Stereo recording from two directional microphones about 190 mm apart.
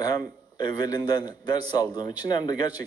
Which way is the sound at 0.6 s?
20° left (ahead or behind).